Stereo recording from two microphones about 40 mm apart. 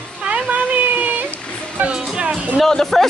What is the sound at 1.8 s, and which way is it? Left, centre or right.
Music, right.